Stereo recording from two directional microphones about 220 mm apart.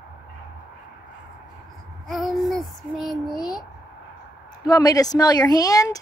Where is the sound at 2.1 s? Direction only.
Centre (ahead or behind).